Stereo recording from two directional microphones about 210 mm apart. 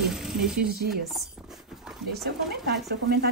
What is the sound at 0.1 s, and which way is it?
Speech, centre (ahead or behind).